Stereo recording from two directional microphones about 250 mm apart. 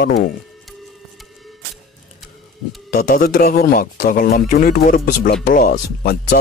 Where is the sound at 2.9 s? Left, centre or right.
Left.